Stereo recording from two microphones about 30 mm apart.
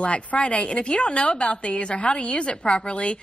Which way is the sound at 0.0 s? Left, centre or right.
Left.